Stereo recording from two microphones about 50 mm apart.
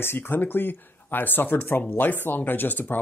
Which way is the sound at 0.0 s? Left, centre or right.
Left.